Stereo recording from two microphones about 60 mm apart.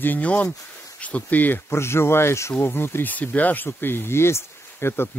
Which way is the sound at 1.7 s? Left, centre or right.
Left.